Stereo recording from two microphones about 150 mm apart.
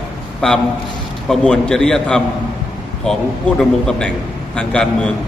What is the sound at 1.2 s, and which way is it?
A man's voice, 5° left (ahead or behind).